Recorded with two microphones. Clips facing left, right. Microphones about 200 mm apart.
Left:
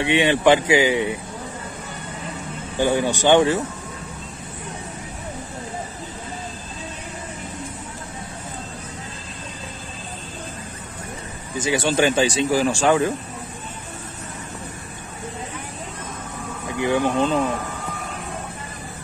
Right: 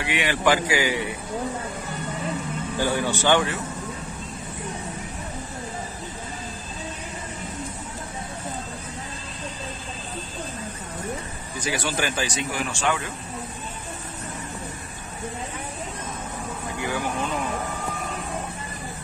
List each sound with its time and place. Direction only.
0.0 s speech: 25° left (ahead or behind)
2.8 s speech: 20° left (ahead or behind)
11.5 s speech: 25° left (ahead or behind)
16.8 s speech: 25° left (ahead or behind)